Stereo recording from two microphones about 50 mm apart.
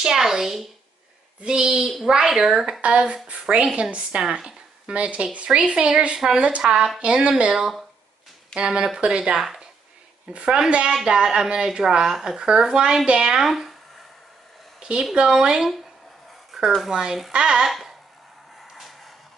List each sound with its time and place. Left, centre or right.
0.0 s speech: centre
2.8 s a woman's voice: right
7.5 s speech: centre
8.5 s speech: centre
9.4 s a woman's voice: centre
10.3 s a woman's voice: centre
13.5 s speech: centre
14.8 s a sound: centre
15.2 s speech: centre
16.8 s speech: centre
17.6 s a sound: centre
18.7 s music: centre